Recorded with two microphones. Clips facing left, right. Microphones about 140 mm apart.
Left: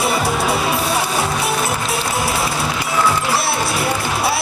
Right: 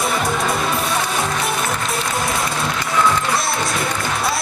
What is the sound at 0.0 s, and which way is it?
Music, 5° left (ahead or behind).